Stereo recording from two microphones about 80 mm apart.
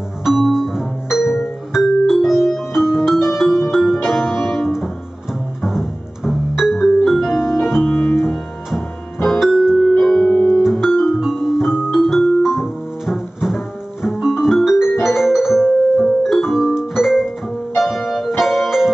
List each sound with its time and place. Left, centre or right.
0.2 s music: centre
4.2 s music: left
4.5 s music: centre
7.2 s music: left
9.2 s music: centre
10.6 s music: centre